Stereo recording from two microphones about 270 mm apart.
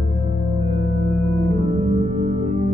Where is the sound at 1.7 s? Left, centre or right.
Right.